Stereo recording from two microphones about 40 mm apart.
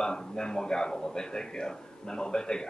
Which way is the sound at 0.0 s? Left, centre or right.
Centre.